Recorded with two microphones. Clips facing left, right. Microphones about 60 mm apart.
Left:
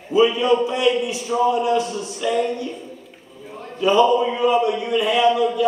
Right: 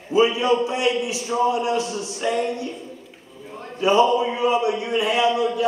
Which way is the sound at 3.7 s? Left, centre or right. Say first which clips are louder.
Left 1 dB; centre.